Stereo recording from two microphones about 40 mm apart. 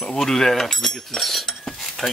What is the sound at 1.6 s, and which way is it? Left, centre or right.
Cutlery, centre.